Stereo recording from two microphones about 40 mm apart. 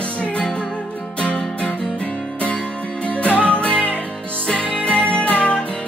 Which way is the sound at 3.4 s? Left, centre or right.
Left.